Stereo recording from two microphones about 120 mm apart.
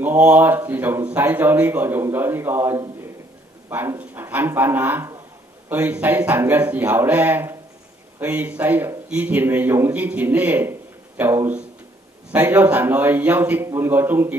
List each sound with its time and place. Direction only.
0.0 s a man's voice: 15° right (ahead or behind)